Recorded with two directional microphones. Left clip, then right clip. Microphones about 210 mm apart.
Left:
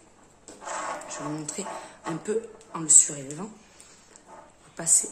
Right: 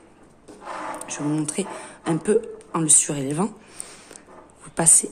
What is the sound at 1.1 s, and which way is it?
Speech, 40° right (ahead or behind).